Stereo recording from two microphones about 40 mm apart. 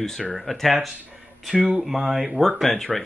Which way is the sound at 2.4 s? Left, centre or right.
Centre.